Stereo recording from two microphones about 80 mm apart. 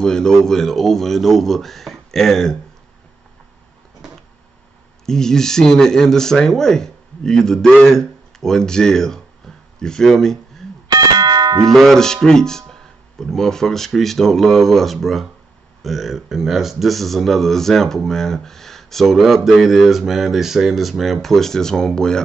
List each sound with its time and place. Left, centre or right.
0.0 s speech: centre
5.0 s speech: centre
10.9 s clang: right
11.6 s speech: centre